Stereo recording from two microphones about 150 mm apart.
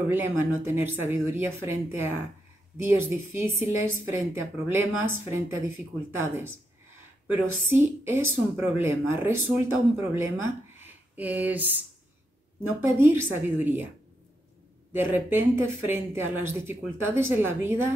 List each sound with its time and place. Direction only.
0.1 s speech: 15° right (ahead or behind)
14.9 s speech: 15° right (ahead or behind)